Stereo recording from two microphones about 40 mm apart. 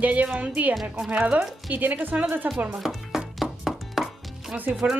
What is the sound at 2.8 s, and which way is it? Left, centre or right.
Speech, centre.